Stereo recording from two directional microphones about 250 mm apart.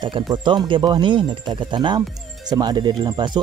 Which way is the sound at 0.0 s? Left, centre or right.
Centre.